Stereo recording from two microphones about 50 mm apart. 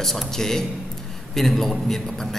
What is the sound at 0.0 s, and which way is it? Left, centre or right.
A man's voice, centre.